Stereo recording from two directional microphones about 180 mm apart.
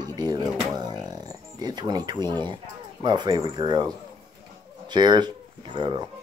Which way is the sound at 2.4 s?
25° right (ahead or behind).